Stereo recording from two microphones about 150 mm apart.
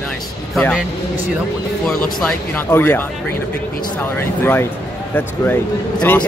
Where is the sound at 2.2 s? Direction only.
10° left (ahead or behind).